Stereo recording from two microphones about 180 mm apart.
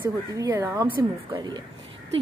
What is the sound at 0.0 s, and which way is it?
Speech, 10° right (ahead or behind).